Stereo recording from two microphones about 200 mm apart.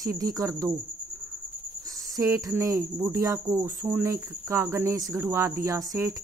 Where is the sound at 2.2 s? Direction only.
15° right (ahead or behind).